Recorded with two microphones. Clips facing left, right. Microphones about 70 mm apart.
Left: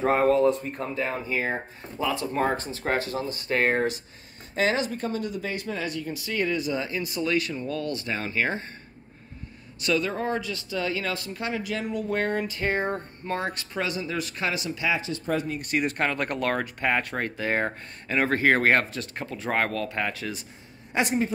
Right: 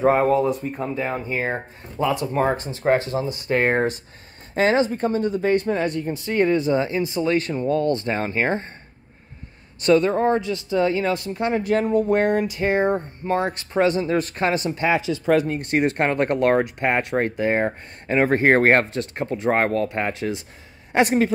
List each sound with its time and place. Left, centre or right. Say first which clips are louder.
0.0 s speech: right 3 dB; centre
1.2 s speech: right 3 dB; right
2.3 s speech: right 4 dB; right
4.6 s speech: right 6 dB; right
9.8 s speech: right 9 dB; right
11.6 s speech: right 10 dB; right
12.1 s speech: right 7 dB; right
15.0 s speech: right 9 dB; right
15.4 s speech: right 6 dB; right
18.3 s speech: right 4 dB; right
20.9 s a woman's voice: right 7 dB; right